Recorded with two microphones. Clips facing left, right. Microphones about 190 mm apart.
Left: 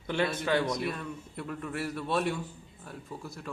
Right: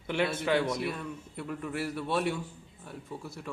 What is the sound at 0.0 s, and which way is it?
A man's voice, 5° right (ahead or behind).